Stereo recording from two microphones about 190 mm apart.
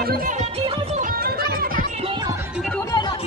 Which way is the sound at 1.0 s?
50° right (ahead or behind).